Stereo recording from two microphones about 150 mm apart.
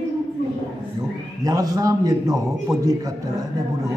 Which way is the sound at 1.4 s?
25° right (ahead or behind).